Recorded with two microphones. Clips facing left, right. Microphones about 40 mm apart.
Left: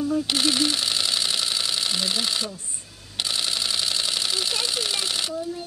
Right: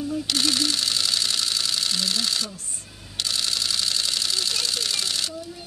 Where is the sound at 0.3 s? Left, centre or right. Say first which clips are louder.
Left 1 dB; centre.